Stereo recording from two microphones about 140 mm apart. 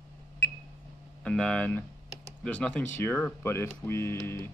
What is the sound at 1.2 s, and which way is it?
Speech, 5° left (ahead or behind).